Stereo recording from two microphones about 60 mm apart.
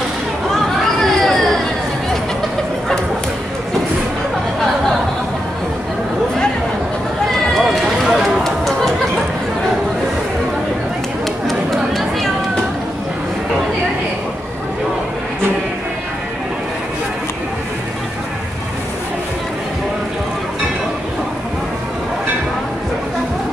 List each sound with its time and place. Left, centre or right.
0.9 s children playing: centre
7.2 s run: centre
11.4 s chatter: centre